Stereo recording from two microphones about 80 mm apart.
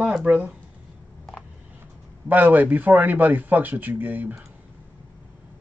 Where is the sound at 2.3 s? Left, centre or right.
Right.